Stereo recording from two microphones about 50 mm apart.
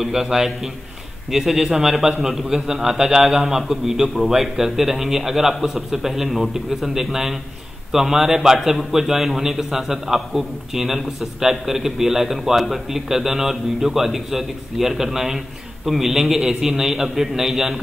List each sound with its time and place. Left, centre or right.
0.0 s a man's voice: centre